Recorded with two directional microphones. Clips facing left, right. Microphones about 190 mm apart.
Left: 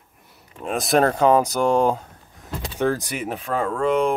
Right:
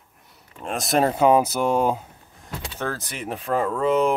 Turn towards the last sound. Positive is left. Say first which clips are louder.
# even
turn(degrees=-5)  # may be behind; listen again after turning